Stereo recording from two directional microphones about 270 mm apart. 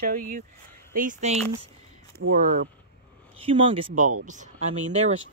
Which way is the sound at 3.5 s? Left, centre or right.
Centre.